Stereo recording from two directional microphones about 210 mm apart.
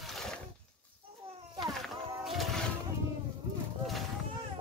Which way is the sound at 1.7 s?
Centre (ahead or behind).